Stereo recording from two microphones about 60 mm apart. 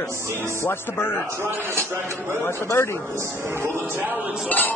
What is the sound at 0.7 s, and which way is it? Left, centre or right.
Speech, left.